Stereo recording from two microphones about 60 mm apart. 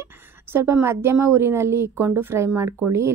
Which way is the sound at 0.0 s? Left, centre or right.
Right.